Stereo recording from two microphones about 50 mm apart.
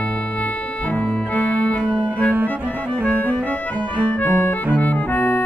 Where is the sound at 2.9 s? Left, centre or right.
Right.